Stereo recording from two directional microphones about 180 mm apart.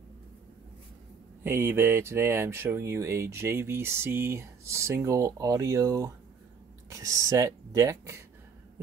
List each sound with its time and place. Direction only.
1.4 s speech: 10° right (ahead or behind)